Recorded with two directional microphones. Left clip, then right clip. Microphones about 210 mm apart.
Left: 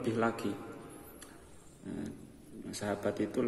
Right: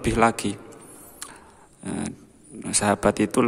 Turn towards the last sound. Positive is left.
turn(degrees=-50)  # may be behind; listen again after turning